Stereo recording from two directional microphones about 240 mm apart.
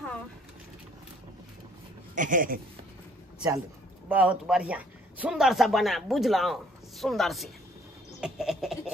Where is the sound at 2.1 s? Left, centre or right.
Right.